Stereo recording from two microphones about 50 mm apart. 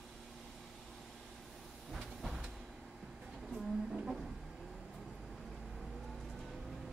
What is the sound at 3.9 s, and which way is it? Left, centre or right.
Music, centre.